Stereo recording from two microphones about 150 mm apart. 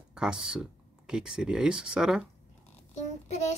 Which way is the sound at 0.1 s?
5° right (ahead or behind).